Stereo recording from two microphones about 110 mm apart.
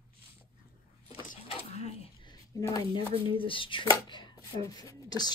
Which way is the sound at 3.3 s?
55° left (ahead or behind).